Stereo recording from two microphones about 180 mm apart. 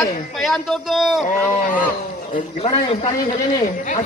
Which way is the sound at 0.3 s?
Centre (ahead or behind).